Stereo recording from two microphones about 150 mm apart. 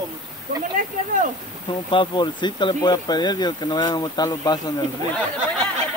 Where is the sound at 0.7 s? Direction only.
65° right (ahead or behind).